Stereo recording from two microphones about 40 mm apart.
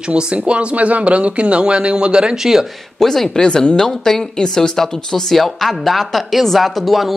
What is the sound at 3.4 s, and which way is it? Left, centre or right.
A woman's voice, left.